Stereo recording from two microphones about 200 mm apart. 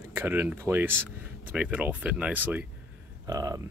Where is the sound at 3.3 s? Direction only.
20° right (ahead or behind).